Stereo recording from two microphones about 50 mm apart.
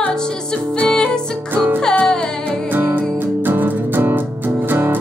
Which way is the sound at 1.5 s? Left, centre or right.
Right.